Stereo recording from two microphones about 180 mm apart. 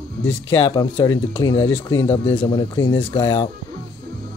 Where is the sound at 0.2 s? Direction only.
90° left.